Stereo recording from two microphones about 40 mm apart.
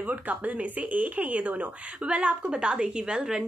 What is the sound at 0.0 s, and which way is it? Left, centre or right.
A woman's voice, right.